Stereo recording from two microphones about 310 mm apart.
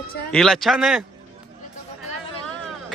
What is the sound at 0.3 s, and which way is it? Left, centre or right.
Speech, centre.